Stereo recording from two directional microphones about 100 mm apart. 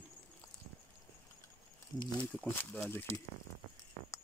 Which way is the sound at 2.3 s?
15° left (ahead or behind).